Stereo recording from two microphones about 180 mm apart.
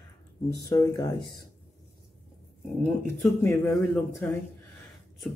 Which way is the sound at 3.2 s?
15° left (ahead or behind).